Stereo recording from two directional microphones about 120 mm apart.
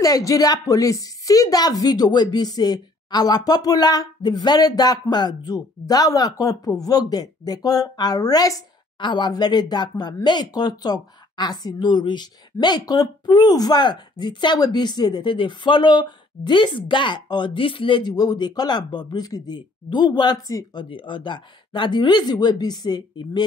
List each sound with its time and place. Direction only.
0.0 s speech: 30° left (ahead or behind)
20.9 s speech: 45° left (ahead or behind)